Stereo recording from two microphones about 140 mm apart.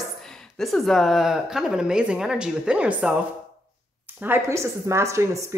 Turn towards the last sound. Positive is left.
turn(degrees=-20)  # may be behind; listen again after turning